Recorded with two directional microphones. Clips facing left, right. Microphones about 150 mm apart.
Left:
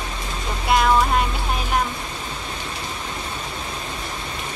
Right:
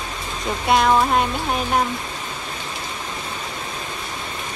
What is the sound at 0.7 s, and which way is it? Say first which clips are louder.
Speech: right 1 dB; centre (ahead or behind).